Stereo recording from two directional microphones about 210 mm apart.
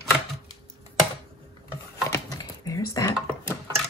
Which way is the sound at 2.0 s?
15° left (ahead or behind).